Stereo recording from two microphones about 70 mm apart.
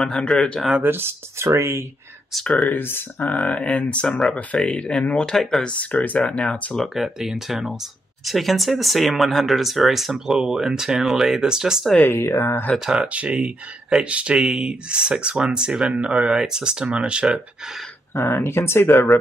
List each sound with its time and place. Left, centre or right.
0.0 s speech: centre
0.8 s speech: right
2.3 s speech: centre
2.7 s speech: left
3.3 s speech: centre
5.7 s speech: left
6.8 s speech: centre
12.0 s speech: left
12.7 s speech: centre
18.2 s speech: left